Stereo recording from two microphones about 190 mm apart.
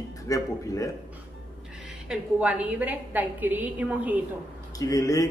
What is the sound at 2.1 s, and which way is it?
A woman's voice, 5° right (ahead or behind).